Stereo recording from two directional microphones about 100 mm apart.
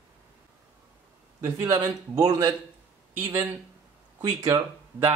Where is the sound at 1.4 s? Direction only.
25° right (ahead or behind).